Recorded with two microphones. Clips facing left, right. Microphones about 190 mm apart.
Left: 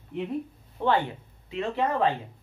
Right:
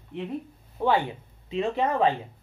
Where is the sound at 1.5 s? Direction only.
20° right (ahead or behind).